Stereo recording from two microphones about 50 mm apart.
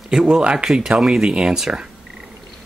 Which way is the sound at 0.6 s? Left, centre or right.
Centre.